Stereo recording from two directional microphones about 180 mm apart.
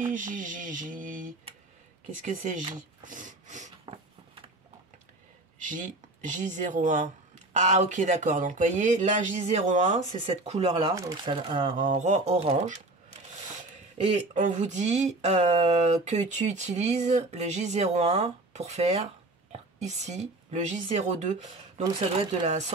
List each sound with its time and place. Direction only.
0.0 s speech: 45° right (ahead or behind)
3.8 s a sound: 30° right (ahead or behind)
6.2 s speech: 45° right (ahead or behind)
11.0 s speech: 25° right (ahead or behind)
11.9 s speech: 40° right (ahead or behind)
14.0 s a woman's voice: 45° right (ahead or behind)